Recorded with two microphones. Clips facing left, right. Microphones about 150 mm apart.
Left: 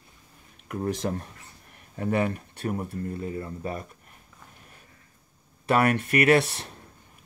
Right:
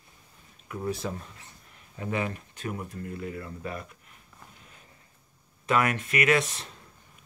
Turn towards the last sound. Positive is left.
turn(degrees=60)  # may be behind; listen again after turning